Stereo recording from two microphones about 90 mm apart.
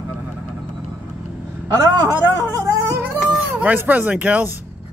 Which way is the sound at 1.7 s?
50° right (ahead or behind).